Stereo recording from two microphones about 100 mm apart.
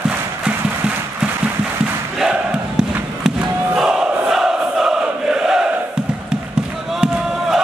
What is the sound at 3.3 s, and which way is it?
Crowd, 5° right (ahead or behind).